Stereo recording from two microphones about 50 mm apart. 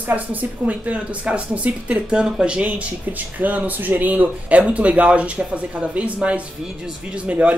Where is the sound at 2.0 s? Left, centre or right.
Centre.